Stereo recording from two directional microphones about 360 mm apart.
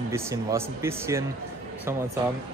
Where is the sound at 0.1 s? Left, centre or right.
Centre.